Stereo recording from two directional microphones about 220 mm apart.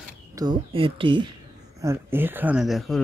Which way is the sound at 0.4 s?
20° right (ahead or behind).